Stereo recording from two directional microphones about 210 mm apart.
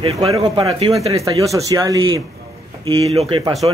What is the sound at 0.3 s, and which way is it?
Speech, 15° right (ahead or behind).